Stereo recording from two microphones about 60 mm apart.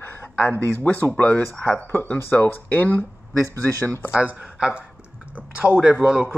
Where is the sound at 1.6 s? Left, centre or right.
Centre.